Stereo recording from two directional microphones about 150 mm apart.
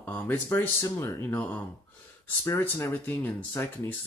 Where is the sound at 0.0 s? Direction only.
10° left (ahead or behind).